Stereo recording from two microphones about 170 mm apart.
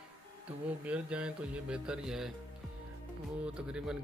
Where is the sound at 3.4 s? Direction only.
5° right (ahead or behind).